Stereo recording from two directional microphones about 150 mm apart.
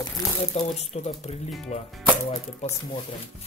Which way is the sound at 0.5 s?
45° left (ahead or behind).